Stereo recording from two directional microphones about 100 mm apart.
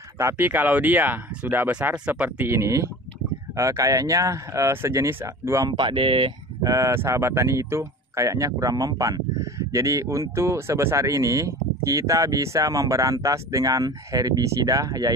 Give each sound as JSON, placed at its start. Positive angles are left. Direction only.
{"t": 0.2, "sound": "speech", "side_deg": -25}
{"t": 5.7, "sound": "speech", "side_deg": -55}
{"t": 6.6, "sound": "speech", "side_deg": -35}